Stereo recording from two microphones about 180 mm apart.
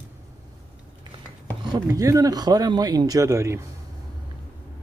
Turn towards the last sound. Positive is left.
turn(degrees=-15)  # may be behind; listen again after turning